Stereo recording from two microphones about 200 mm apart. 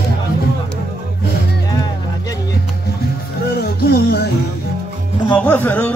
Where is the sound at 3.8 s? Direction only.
55° left (ahead or behind).